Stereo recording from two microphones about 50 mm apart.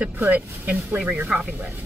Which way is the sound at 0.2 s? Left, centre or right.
Right.